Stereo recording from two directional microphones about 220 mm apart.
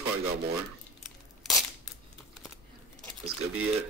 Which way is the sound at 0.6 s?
Centre (ahead or behind).